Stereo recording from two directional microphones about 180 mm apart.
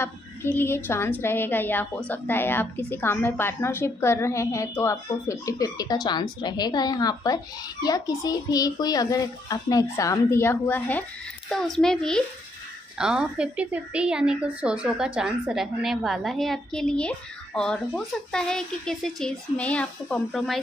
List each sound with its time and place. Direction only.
0.0 s a woman's voice: 15° left (ahead or behind)